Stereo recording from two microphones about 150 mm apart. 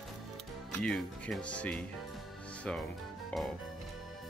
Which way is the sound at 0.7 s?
10° left (ahead or behind).